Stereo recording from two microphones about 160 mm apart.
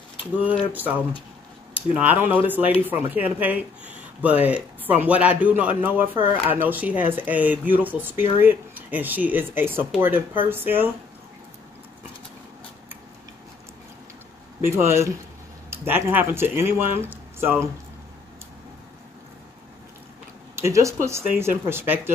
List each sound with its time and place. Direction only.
0.7 s speech: 10° right (ahead or behind)
14.6 s speech: 15° right (ahead or behind)
20.5 s speech: 20° right (ahead or behind)